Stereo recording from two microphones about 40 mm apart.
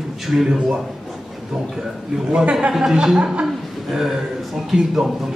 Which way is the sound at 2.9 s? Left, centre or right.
Centre.